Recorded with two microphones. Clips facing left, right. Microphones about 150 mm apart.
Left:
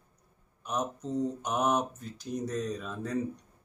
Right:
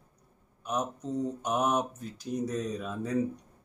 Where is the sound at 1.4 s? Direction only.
Centre (ahead or behind).